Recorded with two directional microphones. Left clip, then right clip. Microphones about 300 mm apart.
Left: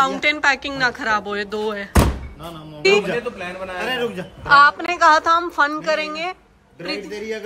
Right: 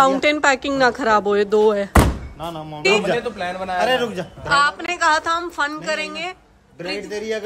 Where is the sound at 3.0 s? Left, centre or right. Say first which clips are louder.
Right 3 dB; right.